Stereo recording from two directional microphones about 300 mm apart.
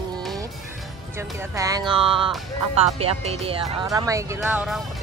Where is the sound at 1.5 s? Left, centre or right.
Centre.